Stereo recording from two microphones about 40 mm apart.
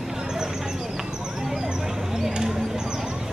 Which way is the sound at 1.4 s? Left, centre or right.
Centre.